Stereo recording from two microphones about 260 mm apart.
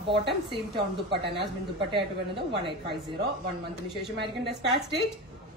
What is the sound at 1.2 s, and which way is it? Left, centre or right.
Speech, right.